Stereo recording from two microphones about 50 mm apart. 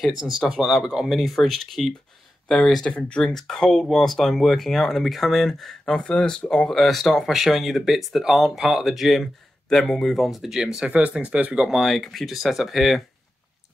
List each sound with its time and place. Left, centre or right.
0.5 s speech: centre
1.2 s speech: centre
2.5 s speech: centre
3.3 s speech: centre
10.2 s speech: centre
10.9 s speech: right
11.8 s speech: centre